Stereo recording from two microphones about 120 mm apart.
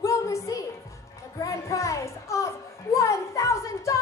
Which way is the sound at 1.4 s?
25° left (ahead or behind).